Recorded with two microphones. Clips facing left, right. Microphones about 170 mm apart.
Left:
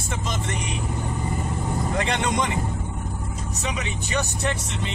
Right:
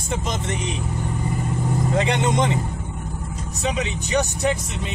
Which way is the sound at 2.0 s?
20° right (ahead or behind).